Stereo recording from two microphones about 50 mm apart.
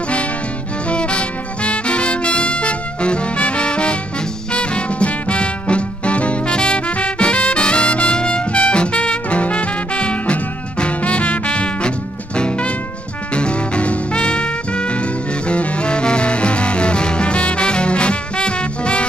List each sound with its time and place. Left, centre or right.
0.8 s music: left